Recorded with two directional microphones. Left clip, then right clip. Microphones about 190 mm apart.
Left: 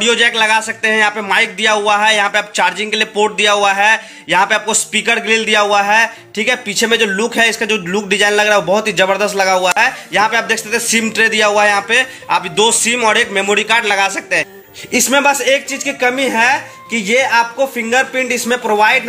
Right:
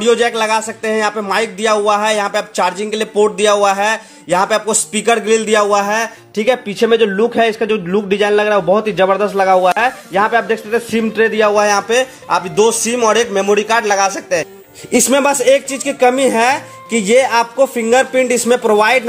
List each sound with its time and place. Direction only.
0.0 s a man's voice: 40° right (ahead or behind)